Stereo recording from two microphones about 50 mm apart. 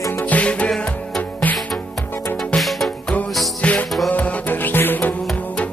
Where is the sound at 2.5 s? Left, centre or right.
Left.